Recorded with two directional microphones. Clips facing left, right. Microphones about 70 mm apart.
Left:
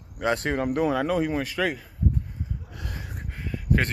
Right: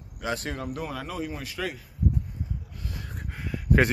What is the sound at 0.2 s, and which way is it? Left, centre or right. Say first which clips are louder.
Speech: left 7 dB; left.